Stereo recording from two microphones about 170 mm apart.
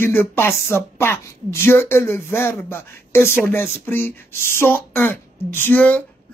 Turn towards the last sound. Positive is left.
turn(degrees=10)  # may be behind; listen again after turning